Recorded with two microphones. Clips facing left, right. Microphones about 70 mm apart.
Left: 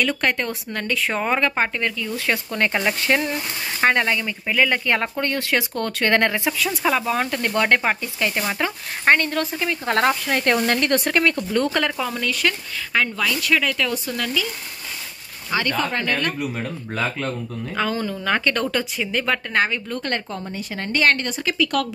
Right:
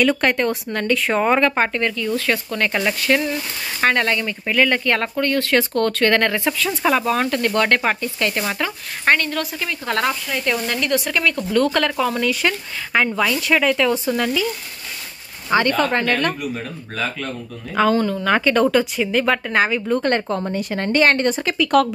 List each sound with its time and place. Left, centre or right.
0.0 s speech: centre
2.1 s speech: centre
6.8 s speech: centre; by 10.1 s left
10.2 s speech: left
11.7 s speech: centre
12.3 s speech: right
15.8 s speech: right
16.3 s speech: left
17.7 s speech: centre
18.3 s speech: centre
19.9 s speech: right
20.2 s speech: right